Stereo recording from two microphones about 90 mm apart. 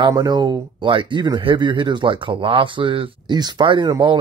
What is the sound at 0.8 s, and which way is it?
Speech, 70° right (ahead or behind).